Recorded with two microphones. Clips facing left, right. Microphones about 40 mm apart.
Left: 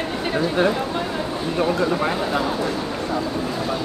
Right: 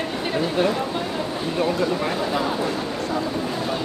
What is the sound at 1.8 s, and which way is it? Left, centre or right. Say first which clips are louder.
Speech: left 2 dB; centre.